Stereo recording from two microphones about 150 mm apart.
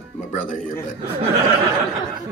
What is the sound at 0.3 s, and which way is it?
Speech, 55° left (ahead or behind).